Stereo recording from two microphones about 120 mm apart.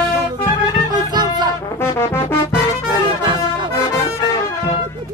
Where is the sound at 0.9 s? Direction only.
35° right (ahead or behind).